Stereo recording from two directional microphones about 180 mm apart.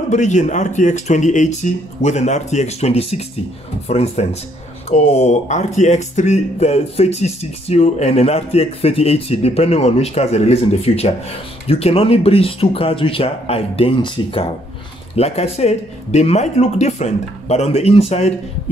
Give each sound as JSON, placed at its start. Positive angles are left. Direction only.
{"t": 0.1, "sound": "speech", "side_deg": 40}